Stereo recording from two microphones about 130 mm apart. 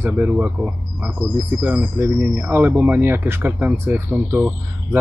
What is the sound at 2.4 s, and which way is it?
Speech, 15° right (ahead or behind).